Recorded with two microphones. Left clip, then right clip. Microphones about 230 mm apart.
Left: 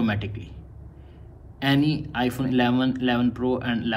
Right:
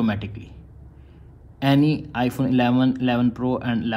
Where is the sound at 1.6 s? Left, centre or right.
Right.